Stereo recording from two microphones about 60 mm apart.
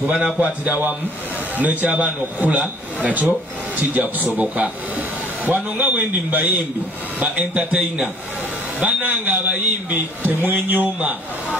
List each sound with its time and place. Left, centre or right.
0.1 s a man's voice: right